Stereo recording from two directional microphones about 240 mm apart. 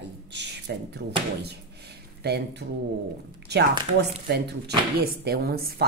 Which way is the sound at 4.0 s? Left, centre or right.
Right.